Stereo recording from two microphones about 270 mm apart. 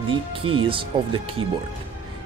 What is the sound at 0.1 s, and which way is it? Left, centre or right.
Speech, centre.